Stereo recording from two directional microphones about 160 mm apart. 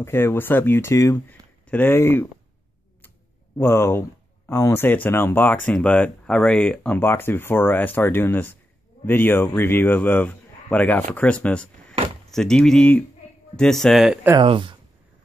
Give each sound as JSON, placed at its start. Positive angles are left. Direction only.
{"t": 0.0, "sound": "speech", "side_deg": 15}
{"t": 3.5, "sound": "speech", "side_deg": 15}
{"t": 14.4, "sound": "speech", "side_deg": -30}